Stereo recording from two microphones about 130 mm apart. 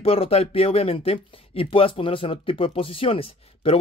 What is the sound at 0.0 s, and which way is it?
Speech, 50° left (ahead or behind).